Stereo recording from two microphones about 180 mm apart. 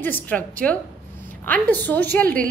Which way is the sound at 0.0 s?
10° left (ahead or behind).